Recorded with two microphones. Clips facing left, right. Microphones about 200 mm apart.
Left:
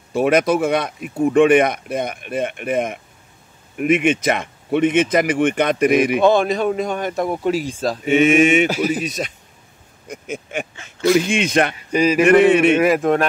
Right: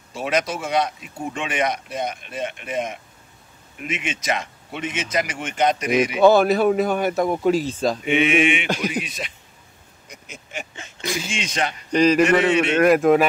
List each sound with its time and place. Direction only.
0.1 s speech: 55° left (ahead or behind)
6.2 s a man's voice: 5° right (ahead or behind)
7.2 s a man's voice: 5° left (ahead or behind)
8.0 s mantra: 45° left (ahead or behind)
8.6 s speech: 5° left (ahead or behind)
10.0 s a sound: 50° left (ahead or behind)
11.1 s speech: 55° left (ahead or behind)
11.9 s speech: 10° left (ahead or behind)
12.4 s speech: 55° left (ahead or behind)
12.7 s a man's voice: centre (ahead or behind)